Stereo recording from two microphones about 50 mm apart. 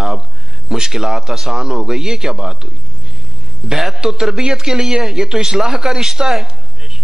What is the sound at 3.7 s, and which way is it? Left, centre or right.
A man's voice, centre.